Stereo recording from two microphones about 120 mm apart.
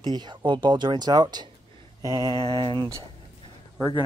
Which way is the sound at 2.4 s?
45° right (ahead or behind).